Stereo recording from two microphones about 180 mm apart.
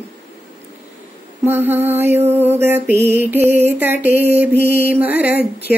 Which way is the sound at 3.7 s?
10° right (ahead or behind).